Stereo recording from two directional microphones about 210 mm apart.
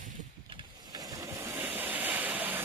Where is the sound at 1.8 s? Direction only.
10° right (ahead or behind).